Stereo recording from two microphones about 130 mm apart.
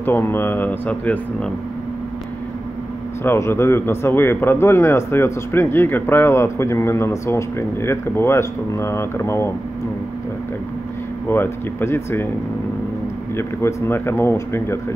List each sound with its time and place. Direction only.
0.0 s speech: 15° left (ahead or behind)
3.3 s a man's voice: 20° left (ahead or behind)
11.2 s speech: 15° left (ahead or behind)
13.4 s a man's voice: 20° left (ahead or behind)